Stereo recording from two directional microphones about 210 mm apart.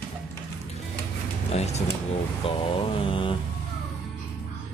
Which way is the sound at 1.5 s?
30° left (ahead or behind).